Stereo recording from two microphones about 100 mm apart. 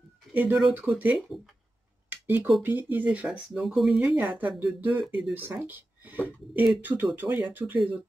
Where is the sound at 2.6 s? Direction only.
20° right (ahead or behind).